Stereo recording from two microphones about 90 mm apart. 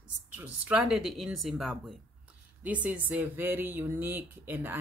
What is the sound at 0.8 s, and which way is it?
Speech, 5° right (ahead or behind).